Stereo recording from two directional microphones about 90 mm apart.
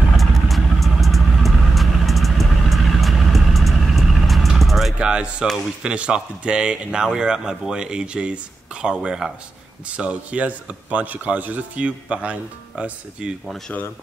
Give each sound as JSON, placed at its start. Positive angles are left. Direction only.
{"t": 0.2, "sound": "vehicle", "side_deg": 0}
{"t": 5.8, "sound": "a man's voice", "side_deg": -10}